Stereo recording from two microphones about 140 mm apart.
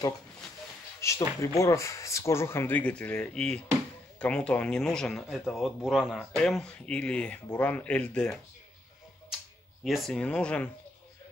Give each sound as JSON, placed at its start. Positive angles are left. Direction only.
{"t": 1.0, "sound": "speech", "side_deg": 20}
{"t": 9.8, "sound": "speech", "side_deg": 0}